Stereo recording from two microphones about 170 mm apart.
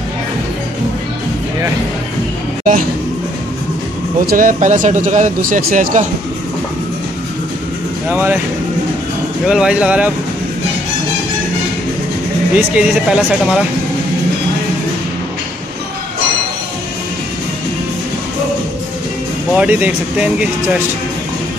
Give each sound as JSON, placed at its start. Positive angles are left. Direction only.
{"t": 4.3, "sound": "speech", "side_deg": -50}
{"t": 8.1, "sound": "speech", "side_deg": -10}
{"t": 9.5, "sound": "speech", "side_deg": -5}
{"t": 12.5, "sound": "speech", "side_deg": -5}
{"t": 19.5, "sound": "speech", "side_deg": -10}